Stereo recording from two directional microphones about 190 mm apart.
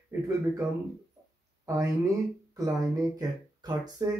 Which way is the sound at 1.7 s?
15° right (ahead or behind).